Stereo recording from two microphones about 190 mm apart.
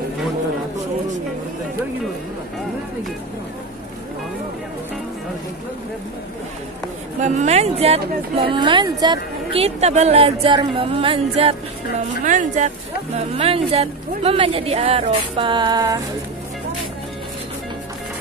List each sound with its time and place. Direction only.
7.2 s speech: 40° right (ahead or behind)
12.3 s speech: 40° right (ahead or behind); by 16.0 s 20° right (ahead or behind)